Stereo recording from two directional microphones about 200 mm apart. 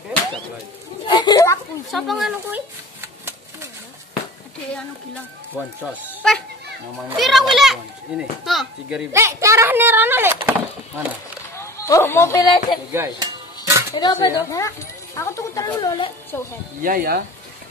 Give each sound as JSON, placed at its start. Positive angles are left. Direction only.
{"t": 1.0, "sound": "speech", "side_deg": 20}
{"t": 1.9, "sound": "speech", "side_deg": 0}
{"t": 5.8, "sound": "a child's voice", "side_deg": 0}
{"t": 9.1, "sound": "a child's voice", "side_deg": -15}
{"t": 11.5, "sound": "speech", "side_deg": 15}
{"t": 12.9, "sound": "dishes", "side_deg": -15}
{"t": 13.9, "sound": "speech", "side_deg": 20}
{"t": 16.8, "sound": "speech", "side_deg": -45}